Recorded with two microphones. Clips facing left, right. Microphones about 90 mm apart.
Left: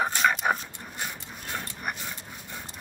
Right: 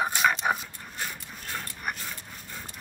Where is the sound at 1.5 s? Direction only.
15° left (ahead or behind).